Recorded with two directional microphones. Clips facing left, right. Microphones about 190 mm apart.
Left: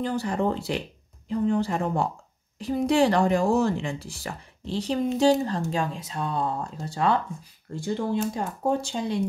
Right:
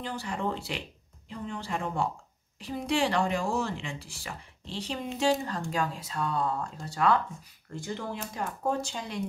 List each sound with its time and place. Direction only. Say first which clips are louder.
0.0 s speech: left 7 dB; 40° left (ahead or behind)
5.7 s speech: left 3 dB; 25° left (ahead or behind)